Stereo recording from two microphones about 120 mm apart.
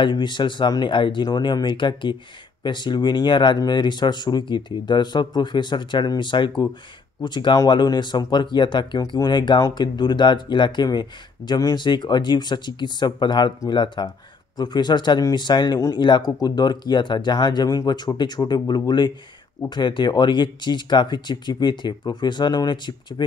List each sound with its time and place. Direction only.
0.0 s speech: 40° left (ahead or behind)